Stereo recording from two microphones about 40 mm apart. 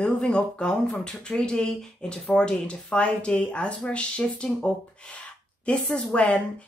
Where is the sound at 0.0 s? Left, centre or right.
Left.